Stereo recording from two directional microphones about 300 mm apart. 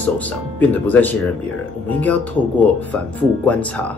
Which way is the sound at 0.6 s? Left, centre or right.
Centre.